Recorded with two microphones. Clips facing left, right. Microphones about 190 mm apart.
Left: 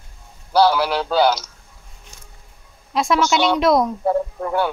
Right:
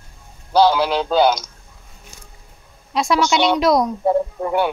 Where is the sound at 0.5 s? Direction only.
20° right (ahead or behind).